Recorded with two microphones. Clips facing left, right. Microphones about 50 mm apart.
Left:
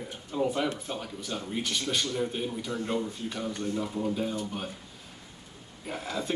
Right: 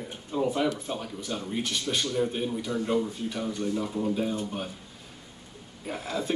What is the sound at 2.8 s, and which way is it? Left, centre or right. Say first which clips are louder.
A man's voice: right 5 dB; centre.